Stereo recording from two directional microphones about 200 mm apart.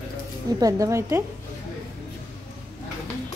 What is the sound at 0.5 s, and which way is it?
Speech, 15° right (ahead or behind).